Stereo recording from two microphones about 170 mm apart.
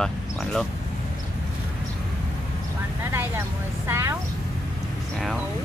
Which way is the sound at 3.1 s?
15° right (ahead or behind).